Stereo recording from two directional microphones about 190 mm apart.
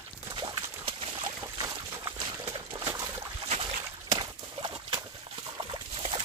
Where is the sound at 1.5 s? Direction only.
20° right (ahead or behind).